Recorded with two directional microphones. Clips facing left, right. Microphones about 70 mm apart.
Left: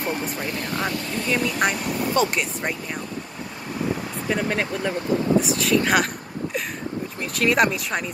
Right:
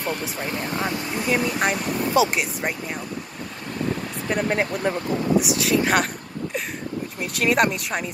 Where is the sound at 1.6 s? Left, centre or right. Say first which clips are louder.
Even; centre.